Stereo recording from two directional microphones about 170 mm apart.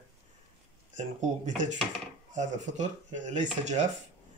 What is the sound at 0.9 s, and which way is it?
Speech, 45° right (ahead or behind).